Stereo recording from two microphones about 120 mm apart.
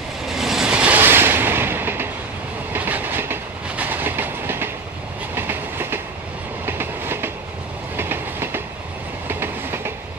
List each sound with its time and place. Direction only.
0.3 s vehicle: 5° right (ahead or behind); by 2.0 s 20° right (ahead or behind)
2.7 s train: 15° right (ahead or behind)